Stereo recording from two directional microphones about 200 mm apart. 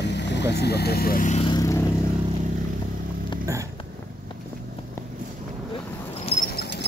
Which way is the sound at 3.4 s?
15° right (ahead or behind).